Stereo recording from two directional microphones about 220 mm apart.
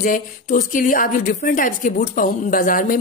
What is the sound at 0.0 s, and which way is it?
A woman's voice, 35° left (ahead or behind).